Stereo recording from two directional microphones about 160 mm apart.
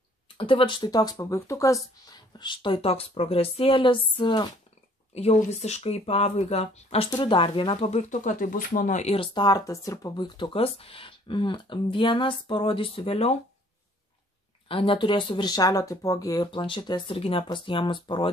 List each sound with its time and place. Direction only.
0.4 s speech: 30° left (ahead or behind)
5.1 s speech: 40° left (ahead or behind)
7.1 s speech: 30° left (ahead or behind)
8.1 s speech: 55° left (ahead or behind)
9.1 s speech: 30° left (ahead or behind)
14.7 s speech: 35° left (ahead or behind)